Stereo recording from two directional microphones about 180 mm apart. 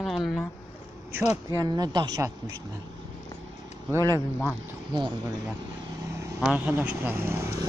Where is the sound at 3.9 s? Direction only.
15° right (ahead or behind).